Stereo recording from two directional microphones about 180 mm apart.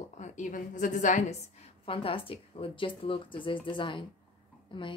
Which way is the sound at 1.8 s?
30° left (ahead or behind).